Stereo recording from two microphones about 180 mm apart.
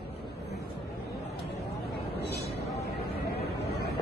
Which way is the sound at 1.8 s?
65° left (ahead or behind).